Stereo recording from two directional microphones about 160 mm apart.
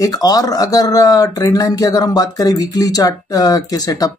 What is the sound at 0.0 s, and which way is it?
Speech, 25° left (ahead or behind).